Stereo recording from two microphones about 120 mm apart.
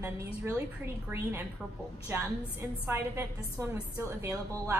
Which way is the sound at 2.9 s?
20° right (ahead or behind).